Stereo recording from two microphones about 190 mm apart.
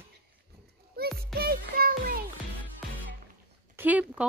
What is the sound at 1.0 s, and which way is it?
Music, 55° right (ahead or behind).